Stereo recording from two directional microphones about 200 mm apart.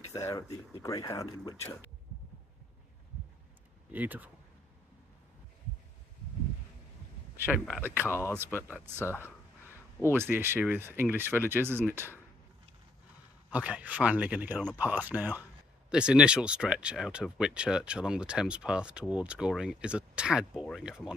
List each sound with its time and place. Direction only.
0.1 s speech: 15° left (ahead or behind)
3.9 s speech: 10° right (ahead or behind)
7.3 s speech: 10° right (ahead or behind)
8.5 s speech: 10° left (ahead or behind)
10.1 s speech: 10° right (ahead or behind)
13.5 s speech: 5° right (ahead or behind)